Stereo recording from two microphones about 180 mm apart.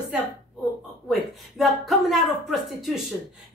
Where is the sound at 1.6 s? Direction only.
Centre (ahead or behind).